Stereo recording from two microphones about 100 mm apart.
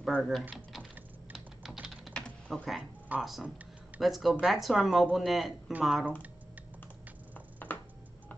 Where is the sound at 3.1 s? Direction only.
15° right (ahead or behind).